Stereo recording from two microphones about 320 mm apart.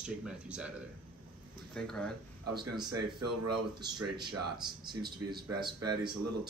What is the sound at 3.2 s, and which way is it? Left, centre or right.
Speech, right.